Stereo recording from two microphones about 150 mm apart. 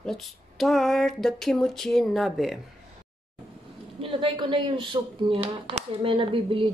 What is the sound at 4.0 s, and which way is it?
Speech, 35° right (ahead or behind).